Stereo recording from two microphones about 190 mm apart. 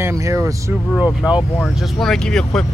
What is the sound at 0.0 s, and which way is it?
Speech, 15° right (ahead or behind).